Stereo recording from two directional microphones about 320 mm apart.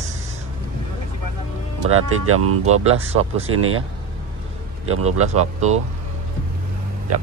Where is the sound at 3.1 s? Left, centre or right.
Centre.